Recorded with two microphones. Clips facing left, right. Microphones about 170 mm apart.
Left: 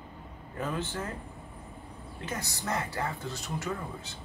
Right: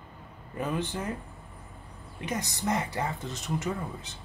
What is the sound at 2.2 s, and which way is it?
A man's voice, 20° right (ahead or behind).